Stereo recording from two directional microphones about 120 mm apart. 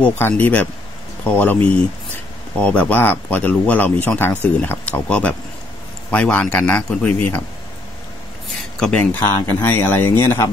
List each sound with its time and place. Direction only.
0.0 s speech: 15° left (ahead or behind)
8.7 s speech: 5° left (ahead or behind)
9.0 s speech: 25° left (ahead or behind)